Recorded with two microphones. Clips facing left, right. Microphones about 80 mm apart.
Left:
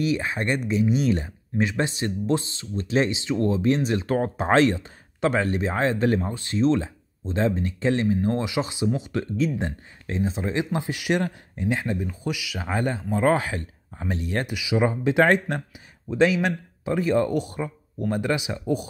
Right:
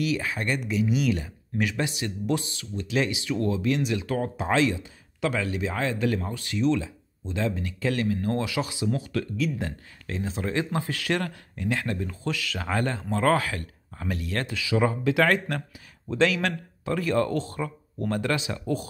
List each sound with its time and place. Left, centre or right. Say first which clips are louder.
0.0 s speech: left 3 dB; left